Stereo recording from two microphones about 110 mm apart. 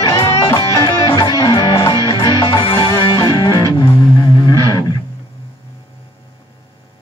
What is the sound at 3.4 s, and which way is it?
Music, 35° left (ahead or behind).